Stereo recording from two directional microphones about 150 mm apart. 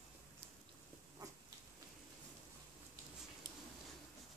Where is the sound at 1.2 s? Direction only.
20° right (ahead or behind).